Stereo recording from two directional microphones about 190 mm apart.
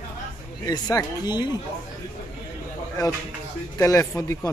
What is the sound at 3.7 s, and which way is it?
Speech, 15° left (ahead or behind).